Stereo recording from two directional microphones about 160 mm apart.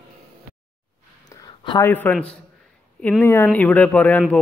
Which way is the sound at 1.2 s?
25° left (ahead or behind).